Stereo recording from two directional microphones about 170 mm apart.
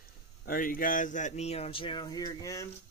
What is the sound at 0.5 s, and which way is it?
Speech, 55° left (ahead or behind).